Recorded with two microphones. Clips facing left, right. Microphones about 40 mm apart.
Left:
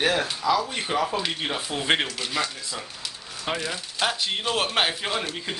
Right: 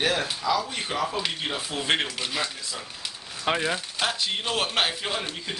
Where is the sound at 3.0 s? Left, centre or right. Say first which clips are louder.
Right 5 dB; right.